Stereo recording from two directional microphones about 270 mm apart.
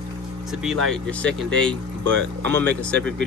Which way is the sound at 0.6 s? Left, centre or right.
Centre.